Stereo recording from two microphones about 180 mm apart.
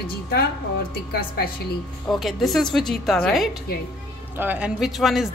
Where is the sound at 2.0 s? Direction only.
Centre (ahead or behind).